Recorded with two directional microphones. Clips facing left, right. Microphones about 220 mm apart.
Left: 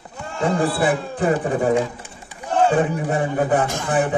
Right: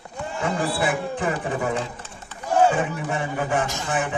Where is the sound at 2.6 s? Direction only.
35° left (ahead or behind).